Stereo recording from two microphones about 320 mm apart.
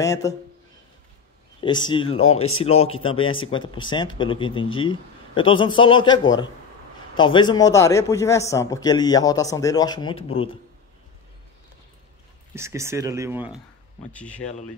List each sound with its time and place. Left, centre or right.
0.0 s speech: centre
1.6 s speech: centre
2.3 s speech: left
2.6 s speech: centre
12.5 s speech: centre